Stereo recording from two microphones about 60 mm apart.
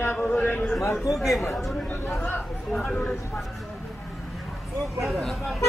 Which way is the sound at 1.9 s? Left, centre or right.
Left.